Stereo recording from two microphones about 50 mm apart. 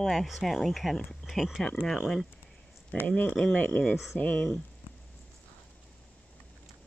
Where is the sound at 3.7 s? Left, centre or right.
Left.